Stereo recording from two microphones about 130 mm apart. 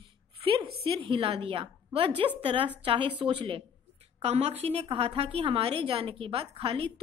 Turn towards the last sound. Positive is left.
turn(degrees=-45)  # may be behind; listen again after turning